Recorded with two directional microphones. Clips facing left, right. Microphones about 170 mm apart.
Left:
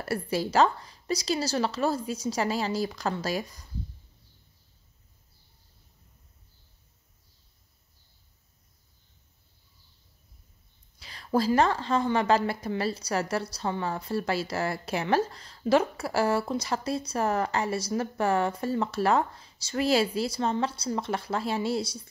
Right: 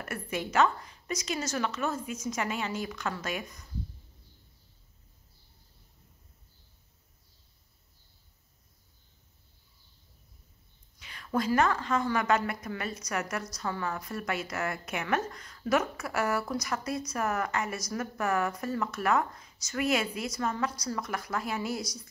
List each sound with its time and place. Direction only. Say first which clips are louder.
0.0 s a woman's voice: left 6 dB; 35° left (ahead or behind)
11.0 s a woman's voice: left 4 dB; 35° left (ahead or behind)